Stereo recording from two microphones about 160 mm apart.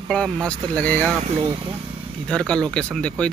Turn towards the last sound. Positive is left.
turn(degrees=5)  # may be behind; listen again after turning